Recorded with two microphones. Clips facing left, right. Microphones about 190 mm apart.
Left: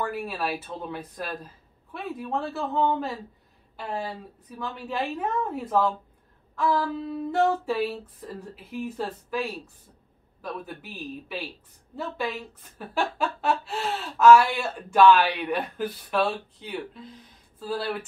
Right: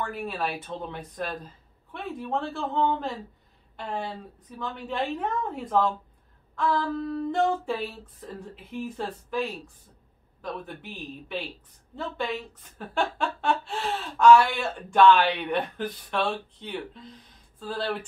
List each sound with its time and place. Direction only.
0.0 s speech: 5° left (ahead or behind)